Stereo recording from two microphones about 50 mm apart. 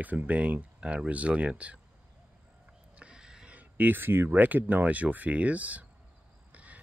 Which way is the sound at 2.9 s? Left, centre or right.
Centre.